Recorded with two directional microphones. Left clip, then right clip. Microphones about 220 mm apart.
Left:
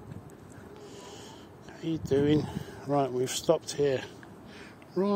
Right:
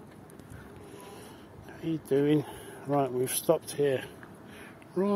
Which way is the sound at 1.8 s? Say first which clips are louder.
Even; centre (ahead or behind).